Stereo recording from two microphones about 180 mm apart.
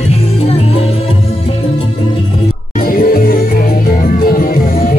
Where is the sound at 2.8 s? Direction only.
55° left (ahead or behind).